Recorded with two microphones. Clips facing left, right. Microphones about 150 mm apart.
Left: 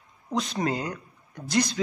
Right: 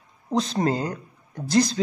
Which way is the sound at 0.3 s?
25° right (ahead or behind).